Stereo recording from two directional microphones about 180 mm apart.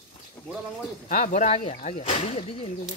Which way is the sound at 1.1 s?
45° left (ahead or behind).